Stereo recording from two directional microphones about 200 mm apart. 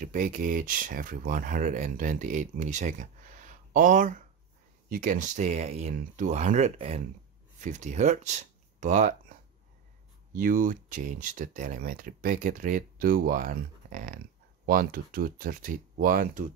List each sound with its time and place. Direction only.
0.0 s speech: 40° right (ahead or behind)
10.3 s speech: 40° right (ahead or behind)